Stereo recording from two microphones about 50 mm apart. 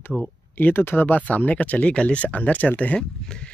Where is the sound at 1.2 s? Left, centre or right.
Left.